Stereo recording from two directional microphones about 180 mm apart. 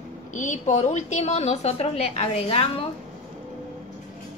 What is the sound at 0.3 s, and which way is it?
A woman's voice, 45° left (ahead or behind).